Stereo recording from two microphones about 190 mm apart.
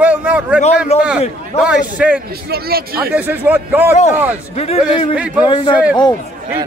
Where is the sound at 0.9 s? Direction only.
35° left (ahead or behind).